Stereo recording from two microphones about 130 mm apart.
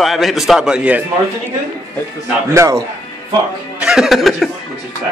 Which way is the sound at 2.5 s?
20° right (ahead or behind).